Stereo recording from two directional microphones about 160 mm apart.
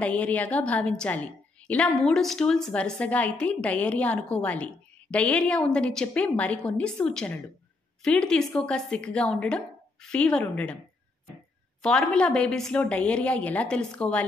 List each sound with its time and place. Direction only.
0.0 s a woman's voice: 10° left (ahead or behind)
11.8 s a woman's voice: 5° left (ahead or behind)